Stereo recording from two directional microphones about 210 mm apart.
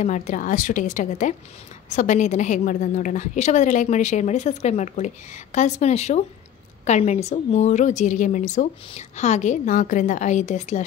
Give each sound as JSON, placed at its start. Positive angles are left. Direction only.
{"t": 0.0, "sound": "a woman's voice", "side_deg": 35}